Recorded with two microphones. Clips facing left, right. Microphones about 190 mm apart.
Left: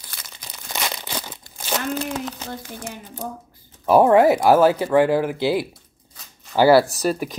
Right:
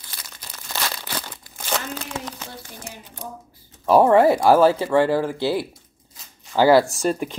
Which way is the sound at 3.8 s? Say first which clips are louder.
Left 1 dB; 15° left (ahead or behind).